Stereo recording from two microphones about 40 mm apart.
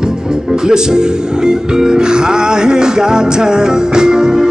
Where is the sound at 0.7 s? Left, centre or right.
Centre.